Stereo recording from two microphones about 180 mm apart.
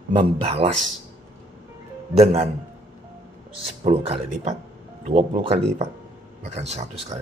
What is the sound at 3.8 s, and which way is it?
Speech, 35° right (ahead or behind).